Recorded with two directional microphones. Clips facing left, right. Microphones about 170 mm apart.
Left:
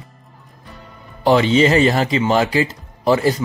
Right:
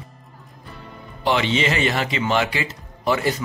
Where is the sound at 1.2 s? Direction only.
40° left (ahead or behind).